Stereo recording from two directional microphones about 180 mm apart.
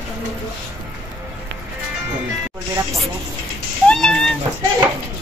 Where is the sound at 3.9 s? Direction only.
5° left (ahead or behind).